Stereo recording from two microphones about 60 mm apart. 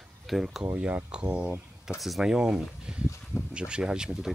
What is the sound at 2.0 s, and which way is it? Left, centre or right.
Speech, centre.